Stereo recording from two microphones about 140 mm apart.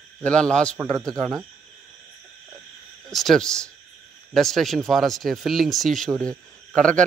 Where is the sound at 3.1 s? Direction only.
5° left (ahead or behind).